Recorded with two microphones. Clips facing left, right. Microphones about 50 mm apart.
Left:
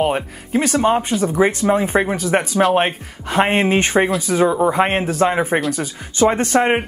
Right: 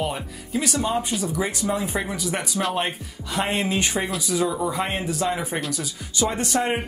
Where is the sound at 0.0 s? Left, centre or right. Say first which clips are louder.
Left 9 dB; left.